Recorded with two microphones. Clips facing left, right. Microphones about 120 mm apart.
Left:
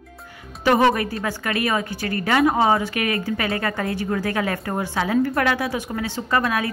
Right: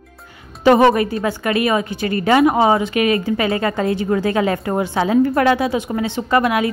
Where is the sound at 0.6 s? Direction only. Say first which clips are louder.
Right 5 dB; 25° right (ahead or behind).